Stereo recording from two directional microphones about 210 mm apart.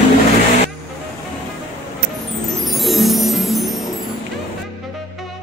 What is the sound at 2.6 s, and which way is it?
Music, centre (ahead or behind).